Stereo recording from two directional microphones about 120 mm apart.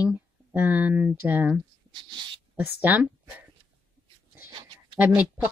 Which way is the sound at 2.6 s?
15° right (ahead or behind).